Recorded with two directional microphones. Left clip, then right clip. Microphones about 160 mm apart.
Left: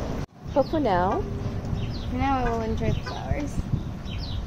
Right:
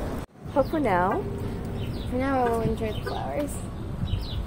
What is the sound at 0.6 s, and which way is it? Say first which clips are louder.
Speech: left 1 dB; 10° right (ahead or behind).